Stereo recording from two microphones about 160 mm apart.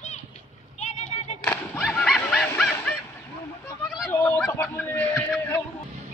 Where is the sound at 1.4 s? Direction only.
10° left (ahead or behind).